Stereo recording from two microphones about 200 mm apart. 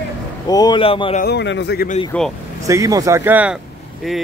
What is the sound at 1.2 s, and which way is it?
Speech, 55° left (ahead or behind).